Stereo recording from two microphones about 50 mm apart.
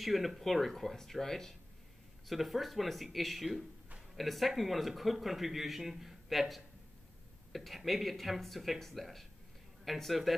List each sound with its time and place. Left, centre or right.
0.0 s a man's voice: centre